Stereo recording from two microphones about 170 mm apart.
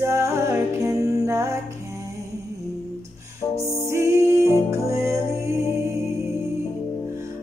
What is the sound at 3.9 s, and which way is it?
Music, 15° right (ahead or behind).